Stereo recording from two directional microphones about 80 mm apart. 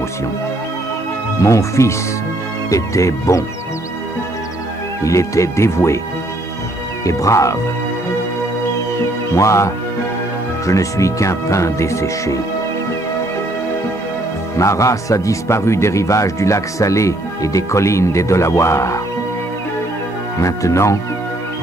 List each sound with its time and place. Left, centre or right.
1.4 s speech: left
5.0 s speech: left
7.1 s speech: left
9.3 s speech: left
10.7 s speech: left
14.6 s speech: left
20.3 s speech: left